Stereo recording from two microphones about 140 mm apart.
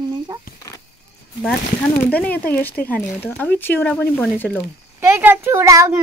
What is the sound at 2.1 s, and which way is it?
Speech, 10° left (ahead or behind).